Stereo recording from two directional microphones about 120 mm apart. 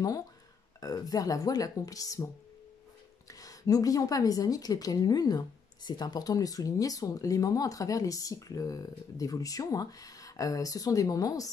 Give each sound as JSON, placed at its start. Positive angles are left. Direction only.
{"t": 0.7, "sound": "speech", "side_deg": 30}
{"t": 3.3, "sound": "a woman's voice", "side_deg": 30}